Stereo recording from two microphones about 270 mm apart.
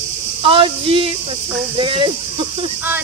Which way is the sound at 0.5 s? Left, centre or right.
Centre.